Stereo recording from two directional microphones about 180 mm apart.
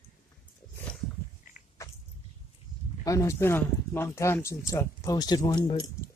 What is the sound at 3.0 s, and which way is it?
Speech, 15° left (ahead or behind).